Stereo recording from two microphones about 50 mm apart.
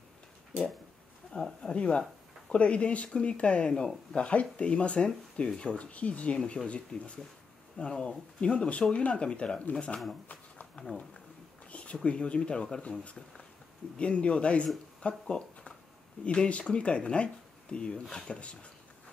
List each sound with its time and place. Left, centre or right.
1.3 s speech: centre
11.7 s speech: left